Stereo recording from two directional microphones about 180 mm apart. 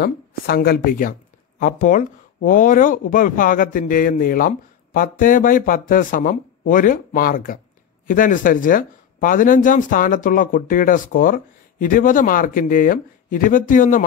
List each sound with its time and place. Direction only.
0.0 s a woman's voice: 60° left (ahead or behind)